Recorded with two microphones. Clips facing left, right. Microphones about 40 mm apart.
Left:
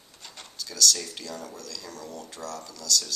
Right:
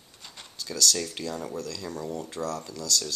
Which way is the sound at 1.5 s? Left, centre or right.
Right.